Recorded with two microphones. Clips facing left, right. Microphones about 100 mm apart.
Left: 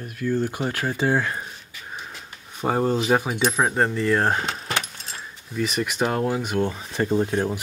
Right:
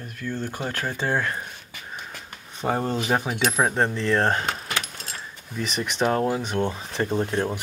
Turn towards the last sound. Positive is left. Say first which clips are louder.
# left 2 dB
turn(degrees=10)  # may be behind; listen again after turning